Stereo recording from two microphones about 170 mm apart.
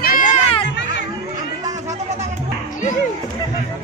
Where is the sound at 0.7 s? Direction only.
90° left.